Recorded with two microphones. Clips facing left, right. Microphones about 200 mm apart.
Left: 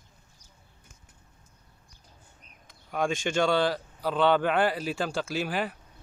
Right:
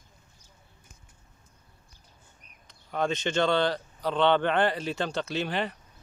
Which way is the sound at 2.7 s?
10° left (ahead or behind).